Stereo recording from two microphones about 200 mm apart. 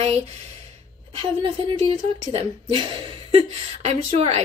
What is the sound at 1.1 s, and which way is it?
A woman's voice, 25° right (ahead or behind).